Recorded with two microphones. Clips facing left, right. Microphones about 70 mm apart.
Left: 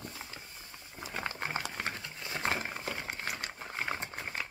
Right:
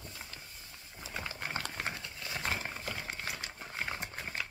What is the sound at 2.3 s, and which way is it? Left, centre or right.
Wild animals, left.